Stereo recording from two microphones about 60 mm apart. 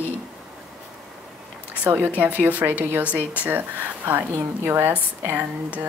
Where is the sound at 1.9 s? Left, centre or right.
Right.